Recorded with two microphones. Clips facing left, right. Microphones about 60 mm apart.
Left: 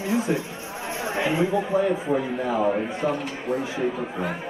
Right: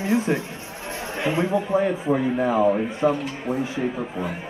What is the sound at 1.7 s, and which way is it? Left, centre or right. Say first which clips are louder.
Speech: right 1 dB; centre.